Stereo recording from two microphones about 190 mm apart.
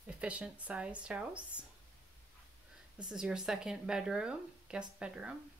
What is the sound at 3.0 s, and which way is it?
Speech, 5° right (ahead or behind).